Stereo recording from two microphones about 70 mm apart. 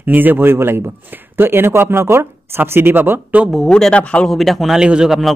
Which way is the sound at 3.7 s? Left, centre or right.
Centre.